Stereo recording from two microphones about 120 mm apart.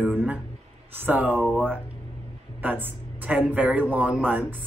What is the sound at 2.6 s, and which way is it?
Speech, 15° right (ahead or behind).